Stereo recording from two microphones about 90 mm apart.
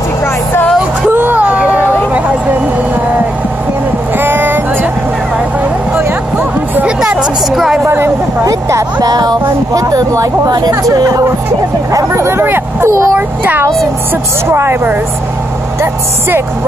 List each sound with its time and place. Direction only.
1.1 s hubbub: 20° right (ahead or behind)
4.2 s music: 25° right (ahead or behind)
7.0 s a sound: 10° right (ahead or behind)
7.8 s a sound: 30° right (ahead or behind)
9.8 s speech: 40° right (ahead or behind)
14.5 s speech: 25° right (ahead or behind)